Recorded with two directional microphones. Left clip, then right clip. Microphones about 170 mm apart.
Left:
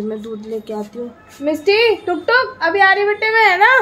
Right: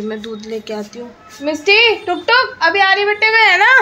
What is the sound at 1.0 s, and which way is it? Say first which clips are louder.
Speech: left 2 dB; 20° left (ahead or behind).